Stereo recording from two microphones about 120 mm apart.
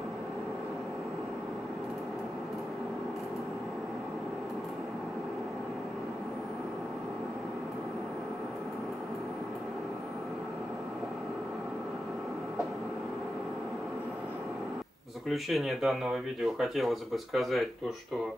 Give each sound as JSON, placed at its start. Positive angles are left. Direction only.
{"t": 15.2, "sound": "speech", "side_deg": 0}